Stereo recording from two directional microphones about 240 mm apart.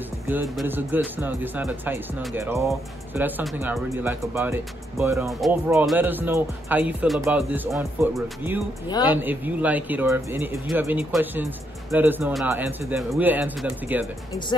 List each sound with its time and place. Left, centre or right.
0.3 s speech: centre
8.8 s a man's voice: centre
9.1 s speech: centre